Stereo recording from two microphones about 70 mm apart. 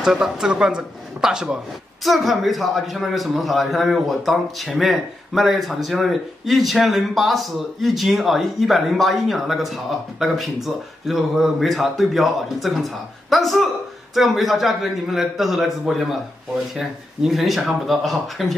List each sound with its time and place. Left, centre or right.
0.0 s a man's voice: centre